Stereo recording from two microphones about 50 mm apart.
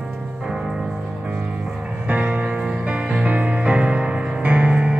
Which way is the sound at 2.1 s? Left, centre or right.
Right.